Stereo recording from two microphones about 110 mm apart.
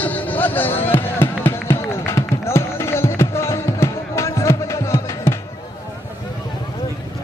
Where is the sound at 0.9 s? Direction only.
20° left (ahead or behind).